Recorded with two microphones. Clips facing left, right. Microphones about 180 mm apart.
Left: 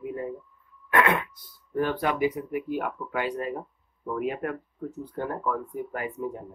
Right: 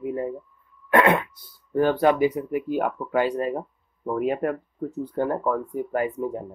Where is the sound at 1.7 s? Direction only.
35° right (ahead or behind).